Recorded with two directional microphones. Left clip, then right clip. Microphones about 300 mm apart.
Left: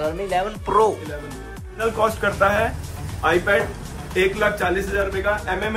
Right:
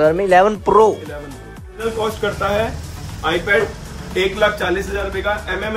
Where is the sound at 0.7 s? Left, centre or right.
Centre.